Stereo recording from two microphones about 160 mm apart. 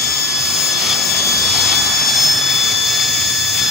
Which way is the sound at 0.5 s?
Centre (ahead or behind).